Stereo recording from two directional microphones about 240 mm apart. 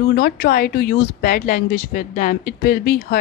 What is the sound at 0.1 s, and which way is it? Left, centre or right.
Speech, left.